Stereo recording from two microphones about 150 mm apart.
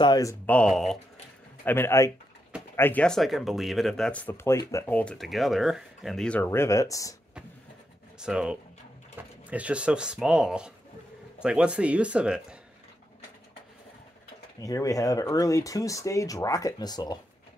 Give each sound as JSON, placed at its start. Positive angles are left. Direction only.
{"t": 0.0, "sound": "speech", "side_deg": 25}
{"t": 0.5, "sound": "speech", "side_deg": 5}
{"t": 1.6, "sound": "speech", "side_deg": 15}
{"t": 8.2, "sound": "speech", "side_deg": -5}
{"t": 14.6, "sound": "speech", "side_deg": 25}